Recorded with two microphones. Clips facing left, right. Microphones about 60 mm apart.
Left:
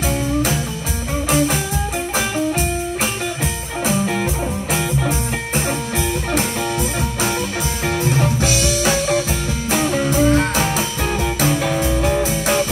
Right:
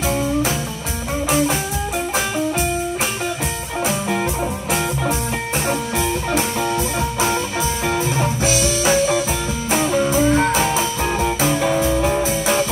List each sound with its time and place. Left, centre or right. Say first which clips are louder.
5.7 s music: right 1 dB; right
8.8 s music: right 2 dB; centre
11.4 s music: right 1 dB; right